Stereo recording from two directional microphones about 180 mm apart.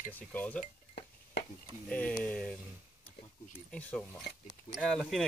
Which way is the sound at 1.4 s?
75° left (ahead or behind).